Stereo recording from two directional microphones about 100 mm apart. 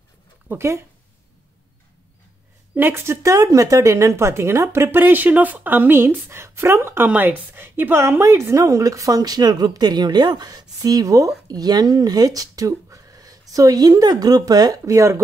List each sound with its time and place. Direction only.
0.5 s speech: 25° right (ahead or behind)
2.7 s a woman's voice: 20° right (ahead or behind)